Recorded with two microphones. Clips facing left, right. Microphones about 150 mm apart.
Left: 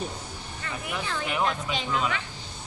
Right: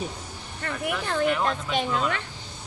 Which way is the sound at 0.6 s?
60° right (ahead or behind).